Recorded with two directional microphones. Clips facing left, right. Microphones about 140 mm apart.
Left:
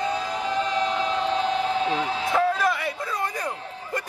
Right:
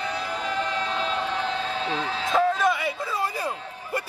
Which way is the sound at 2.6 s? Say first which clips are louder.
Right 1 dB; centre (ahead or behind).